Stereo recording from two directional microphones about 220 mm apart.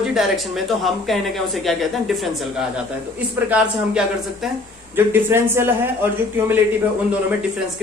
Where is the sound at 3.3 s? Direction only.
5° right (ahead or behind).